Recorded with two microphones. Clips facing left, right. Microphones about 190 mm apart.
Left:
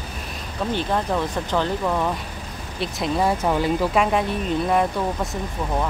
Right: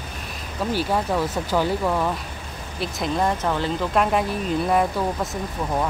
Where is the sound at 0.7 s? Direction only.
5° right (ahead or behind).